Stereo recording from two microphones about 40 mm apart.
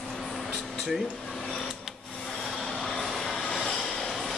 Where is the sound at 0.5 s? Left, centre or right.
Centre.